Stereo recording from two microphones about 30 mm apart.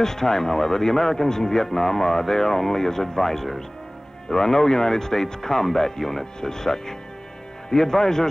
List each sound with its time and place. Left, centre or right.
0.0 s a man's voice: centre